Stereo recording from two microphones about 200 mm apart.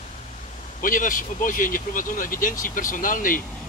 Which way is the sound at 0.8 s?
40° left (ahead or behind).